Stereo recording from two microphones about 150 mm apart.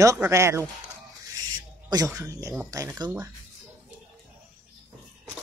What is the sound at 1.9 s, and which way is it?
Speech, 20° right (ahead or behind).